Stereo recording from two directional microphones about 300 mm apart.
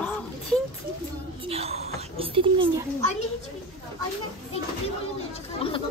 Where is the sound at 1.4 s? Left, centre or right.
Centre.